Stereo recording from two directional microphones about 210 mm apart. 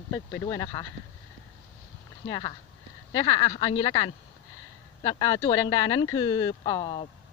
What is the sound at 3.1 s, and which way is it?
Speech, 20° left (ahead or behind).